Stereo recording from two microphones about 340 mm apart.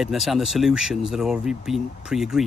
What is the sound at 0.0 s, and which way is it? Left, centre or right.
Speech, centre.